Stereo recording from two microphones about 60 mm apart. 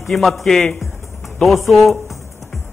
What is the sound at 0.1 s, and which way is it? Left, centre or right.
A man's voice, centre.